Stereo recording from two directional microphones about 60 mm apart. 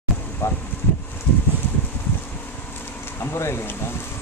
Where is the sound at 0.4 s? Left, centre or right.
Left.